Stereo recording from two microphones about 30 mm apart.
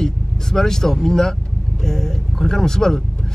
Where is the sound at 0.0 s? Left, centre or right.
Centre.